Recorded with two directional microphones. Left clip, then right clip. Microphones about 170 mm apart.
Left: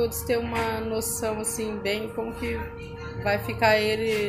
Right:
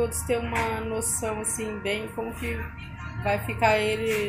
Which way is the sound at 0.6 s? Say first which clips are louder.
Left 1 dB; 20° left (ahead or behind).